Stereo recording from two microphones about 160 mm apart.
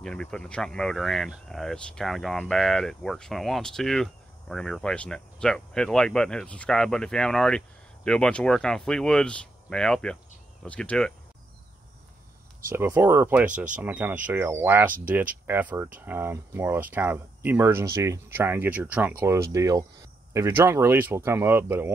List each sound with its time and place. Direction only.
0.0 s speech: 5° left (ahead or behind)
12.7 s speech: 15° right (ahead or behind)
19.5 s speech: 20° right (ahead or behind)